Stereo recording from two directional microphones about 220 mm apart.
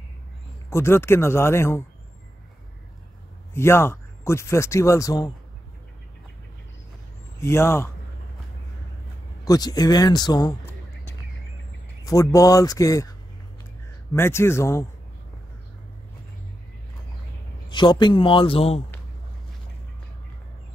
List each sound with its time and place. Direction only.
0.7 s speech: 10° left (ahead or behind)
3.5 s speech: 10° left (ahead or behind)
7.3 s speech: 10° left (ahead or behind)
9.4 s speech: 15° left (ahead or behind)
14.1 s speech: 10° left (ahead or behind)
17.6 s a man's voice: 20° left (ahead or behind)